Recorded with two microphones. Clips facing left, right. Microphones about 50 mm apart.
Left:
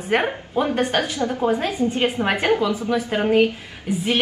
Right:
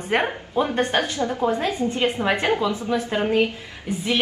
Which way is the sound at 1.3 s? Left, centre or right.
Centre.